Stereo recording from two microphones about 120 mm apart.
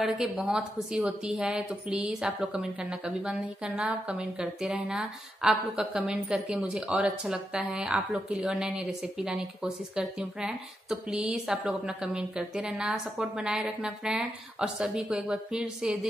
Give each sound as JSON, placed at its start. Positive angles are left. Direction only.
{"t": 0.0, "sound": "speech", "side_deg": -5}